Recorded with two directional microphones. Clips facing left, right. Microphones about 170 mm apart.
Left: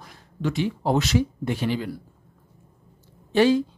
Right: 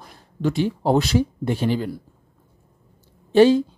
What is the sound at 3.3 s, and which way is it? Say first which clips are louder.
Speech: right 5 dB; 25° right (ahead or behind).